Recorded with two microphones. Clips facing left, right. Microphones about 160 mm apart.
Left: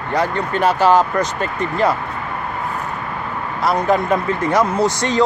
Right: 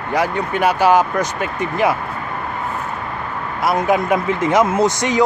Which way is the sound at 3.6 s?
5° right (ahead or behind).